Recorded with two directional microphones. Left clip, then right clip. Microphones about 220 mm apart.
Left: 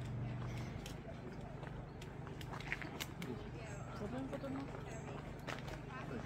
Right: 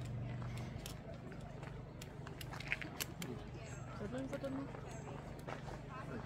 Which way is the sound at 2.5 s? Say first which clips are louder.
Right 2 dB; 40° right (ahead or behind).